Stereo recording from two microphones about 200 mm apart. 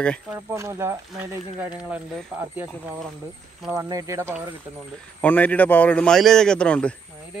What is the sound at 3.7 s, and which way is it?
Speech, 15° right (ahead or behind).